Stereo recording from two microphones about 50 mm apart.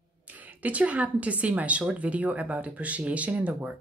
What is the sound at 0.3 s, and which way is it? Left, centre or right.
Speech, right.